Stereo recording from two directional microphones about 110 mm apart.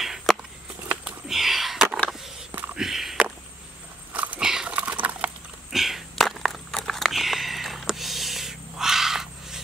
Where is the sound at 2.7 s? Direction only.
5° right (ahead or behind).